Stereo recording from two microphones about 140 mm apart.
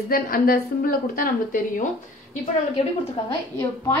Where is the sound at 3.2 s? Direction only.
35° left (ahead or behind).